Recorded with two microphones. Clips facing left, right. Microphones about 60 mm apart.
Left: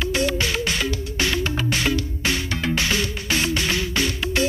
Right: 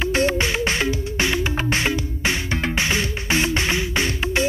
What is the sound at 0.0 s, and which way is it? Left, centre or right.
Music, right.